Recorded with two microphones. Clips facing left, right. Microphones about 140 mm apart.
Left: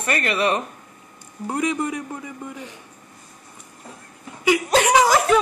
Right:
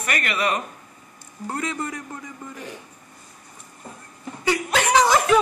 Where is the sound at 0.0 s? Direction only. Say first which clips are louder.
Left 3 dB; 30° left (ahead or behind).